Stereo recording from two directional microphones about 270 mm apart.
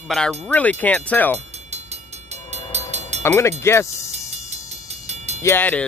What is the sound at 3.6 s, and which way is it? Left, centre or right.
Cricket, centre.